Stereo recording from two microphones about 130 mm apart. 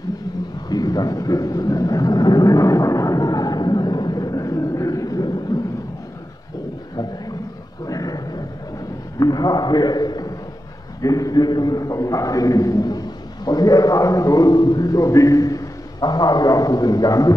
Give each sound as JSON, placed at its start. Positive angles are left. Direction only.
{"t": 0.7, "sound": "vehicle", "side_deg": 30}
{"t": 7.8, "sound": "wild animals", "side_deg": 30}
{"t": 9.2, "sound": "a sound", "side_deg": 30}
{"t": 11.0, "sound": "a man's voice", "side_deg": 25}